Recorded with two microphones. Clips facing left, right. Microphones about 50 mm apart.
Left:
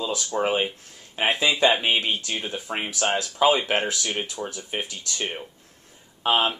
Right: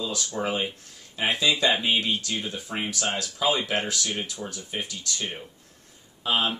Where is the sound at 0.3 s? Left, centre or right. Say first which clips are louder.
Left 6 dB; left.